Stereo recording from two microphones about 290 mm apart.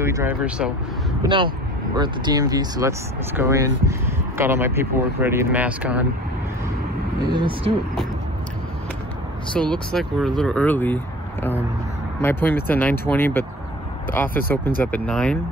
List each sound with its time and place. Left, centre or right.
0.0 s speech: centre
7.3 s speech: centre
9.6 s speech: centre
12.2 s speech: centre